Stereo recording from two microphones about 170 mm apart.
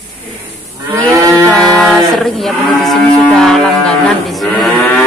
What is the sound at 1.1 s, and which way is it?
Cattle, 20° right (ahead or behind).